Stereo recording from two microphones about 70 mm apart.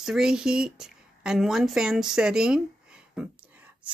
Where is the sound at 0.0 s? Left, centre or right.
Centre.